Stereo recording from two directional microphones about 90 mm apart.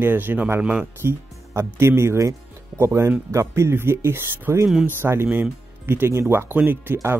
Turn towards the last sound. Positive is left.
turn(degrees=-25)  # may be behind; listen again after turning